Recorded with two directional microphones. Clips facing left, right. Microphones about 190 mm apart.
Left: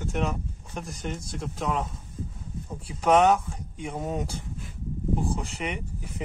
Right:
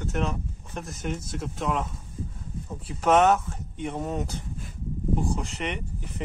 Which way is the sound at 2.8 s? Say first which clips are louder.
Even; centre (ahead or behind).